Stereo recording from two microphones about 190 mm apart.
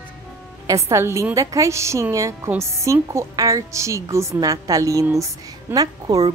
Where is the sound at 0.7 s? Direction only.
15° right (ahead or behind).